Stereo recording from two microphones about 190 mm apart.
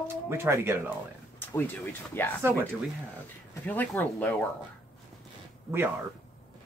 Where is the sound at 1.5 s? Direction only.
10° left (ahead or behind).